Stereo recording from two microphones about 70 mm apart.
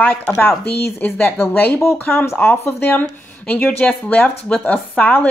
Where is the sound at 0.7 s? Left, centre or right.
Left.